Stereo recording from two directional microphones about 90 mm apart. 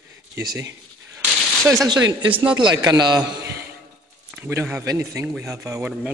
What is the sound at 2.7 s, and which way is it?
Speech, 50° right (ahead or behind).